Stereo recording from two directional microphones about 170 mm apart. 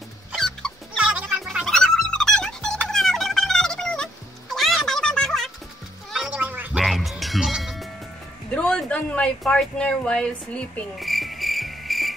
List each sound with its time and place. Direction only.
0.3 s fowl: 5° left (ahead or behind)
2.9 s music: centre (ahead or behind)
8.5 s a sound: 5° left (ahead or behind)